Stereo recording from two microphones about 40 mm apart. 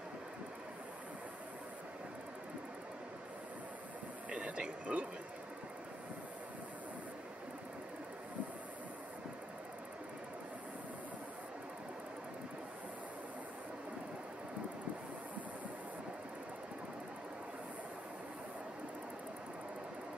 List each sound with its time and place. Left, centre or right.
4.3 s speech: right